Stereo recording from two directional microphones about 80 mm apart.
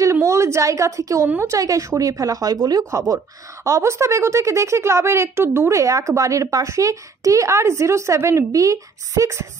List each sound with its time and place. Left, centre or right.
0.0 s a woman's voice: right